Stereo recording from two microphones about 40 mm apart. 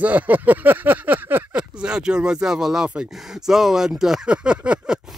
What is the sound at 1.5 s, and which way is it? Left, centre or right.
Speech, right.